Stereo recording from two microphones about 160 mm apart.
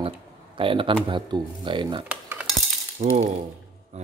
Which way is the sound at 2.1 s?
10° right (ahead or behind).